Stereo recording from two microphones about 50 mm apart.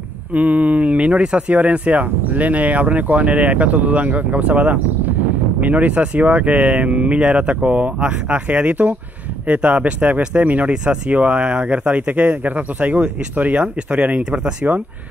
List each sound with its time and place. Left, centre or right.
0.3 s speech: right
10.7 s speech: centre